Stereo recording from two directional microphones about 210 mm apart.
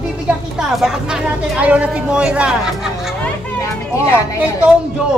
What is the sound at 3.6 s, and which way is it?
Speech, 10° left (ahead or behind).